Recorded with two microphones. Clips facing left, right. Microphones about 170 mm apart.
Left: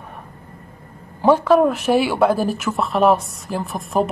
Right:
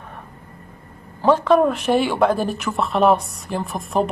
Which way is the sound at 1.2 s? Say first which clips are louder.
Left 1 dB; 10° left (ahead or behind).